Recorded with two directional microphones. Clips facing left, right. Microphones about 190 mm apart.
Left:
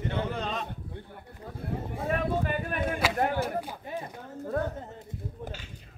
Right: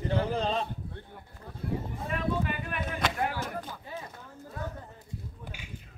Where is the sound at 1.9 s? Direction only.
50° left (ahead or behind).